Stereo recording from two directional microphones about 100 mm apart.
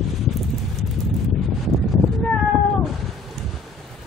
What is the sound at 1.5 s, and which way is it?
Cat, centre (ahead or behind).